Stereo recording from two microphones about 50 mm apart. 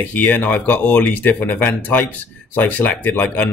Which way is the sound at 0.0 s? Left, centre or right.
Left.